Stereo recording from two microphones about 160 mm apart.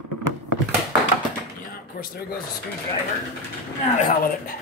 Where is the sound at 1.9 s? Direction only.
70° left (ahead or behind).